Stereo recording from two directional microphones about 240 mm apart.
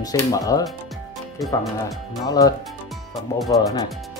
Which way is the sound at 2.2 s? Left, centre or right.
Centre.